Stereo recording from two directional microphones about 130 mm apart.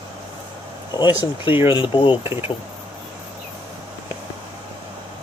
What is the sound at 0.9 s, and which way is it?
Speech, 35° left (ahead or behind).